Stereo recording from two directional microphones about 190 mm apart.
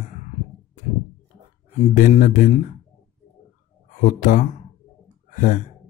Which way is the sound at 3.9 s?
40° left (ahead or behind).